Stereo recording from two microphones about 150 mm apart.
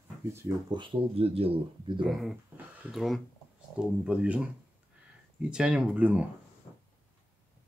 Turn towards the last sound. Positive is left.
turn(degrees=-10)  # may be behind; listen again after turning